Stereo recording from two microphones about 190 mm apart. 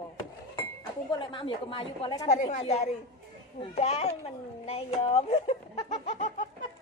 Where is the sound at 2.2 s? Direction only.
35° left (ahead or behind).